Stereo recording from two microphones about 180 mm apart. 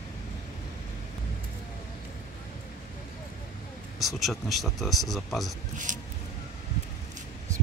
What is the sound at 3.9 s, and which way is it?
Speech, centre (ahead or behind).